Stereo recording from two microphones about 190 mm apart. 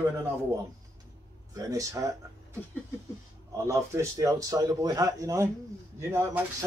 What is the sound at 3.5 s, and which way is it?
Speech, 15° right (ahead or behind).